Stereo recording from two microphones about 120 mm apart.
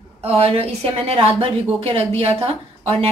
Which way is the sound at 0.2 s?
55° right (ahead or behind).